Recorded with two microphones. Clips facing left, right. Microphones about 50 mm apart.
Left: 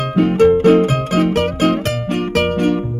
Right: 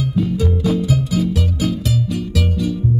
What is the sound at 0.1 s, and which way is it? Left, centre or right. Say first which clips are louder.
Music: left 13 dB; left.